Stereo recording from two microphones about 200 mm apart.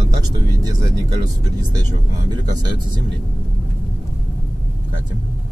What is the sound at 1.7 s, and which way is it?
Speech, 20° right (ahead or behind).